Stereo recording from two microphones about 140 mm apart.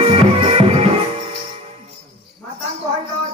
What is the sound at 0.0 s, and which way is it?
Music, 40° right (ahead or behind).